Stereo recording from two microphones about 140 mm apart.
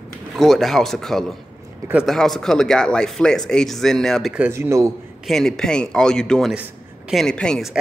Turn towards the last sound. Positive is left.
turn(degrees=0)  # may be behind; listen again after turning